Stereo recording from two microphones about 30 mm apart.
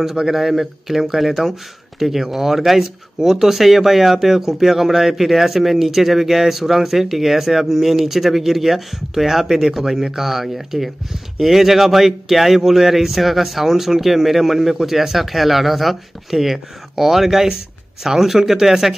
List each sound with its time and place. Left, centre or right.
0.0 s speech: centre